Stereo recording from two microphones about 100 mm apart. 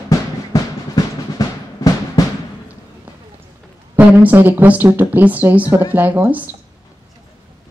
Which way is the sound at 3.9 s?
20° right (ahead or behind).